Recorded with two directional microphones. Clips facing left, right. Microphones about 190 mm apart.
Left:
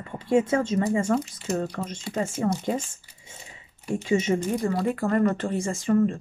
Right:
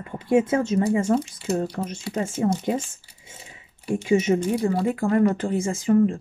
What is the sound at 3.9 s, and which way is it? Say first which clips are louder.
Speech: right 3 dB; 10° right (ahead or behind).